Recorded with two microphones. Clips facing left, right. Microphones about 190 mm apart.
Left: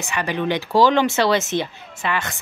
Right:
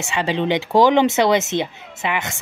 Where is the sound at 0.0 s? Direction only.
25° right (ahead or behind).